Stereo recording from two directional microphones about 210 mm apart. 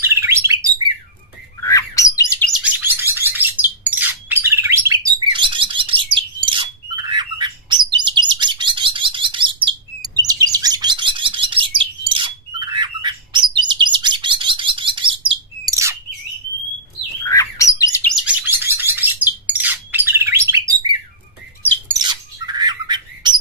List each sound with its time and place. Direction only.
0.0 s bird: 10° right (ahead or behind)
1.6 s bird: 15° left (ahead or behind)
2.5 s bird: 10° right (ahead or behind)
17.2 s bird: 15° left (ahead or behind)
18.1 s bird: 5° right (ahead or behind)